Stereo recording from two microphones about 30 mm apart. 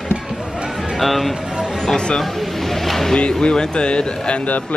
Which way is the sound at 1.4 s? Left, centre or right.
Right.